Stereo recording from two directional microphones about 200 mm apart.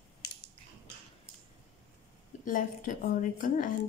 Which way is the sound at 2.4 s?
40° left (ahead or behind).